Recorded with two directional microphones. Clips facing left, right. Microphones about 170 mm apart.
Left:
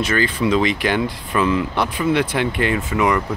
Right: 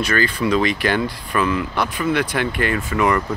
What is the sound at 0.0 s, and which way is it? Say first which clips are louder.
Speech: left 1 dB; 20° left (ahead or behind).